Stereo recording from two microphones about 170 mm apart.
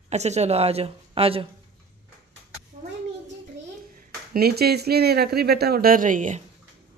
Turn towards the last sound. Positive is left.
turn(degrees=-50)  # may be behind; listen again after turning